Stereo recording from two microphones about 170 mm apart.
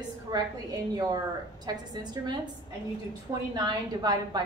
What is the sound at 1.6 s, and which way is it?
Speech, 25° right (ahead or behind).